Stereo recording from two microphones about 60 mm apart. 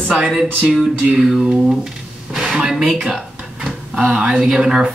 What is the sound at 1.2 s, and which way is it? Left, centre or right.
Speech, centre.